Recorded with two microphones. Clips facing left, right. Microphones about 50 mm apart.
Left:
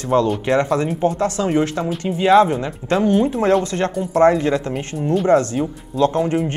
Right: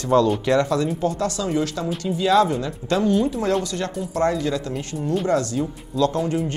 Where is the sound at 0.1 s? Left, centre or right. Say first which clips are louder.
Left 1 dB; left.